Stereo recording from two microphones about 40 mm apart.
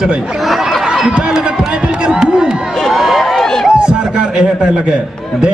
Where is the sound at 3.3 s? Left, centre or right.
Centre.